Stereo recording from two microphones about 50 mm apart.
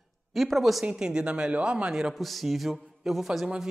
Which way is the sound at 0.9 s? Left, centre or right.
Centre.